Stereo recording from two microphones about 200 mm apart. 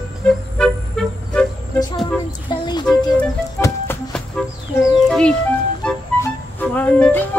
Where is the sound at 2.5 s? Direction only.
20° left (ahead or behind).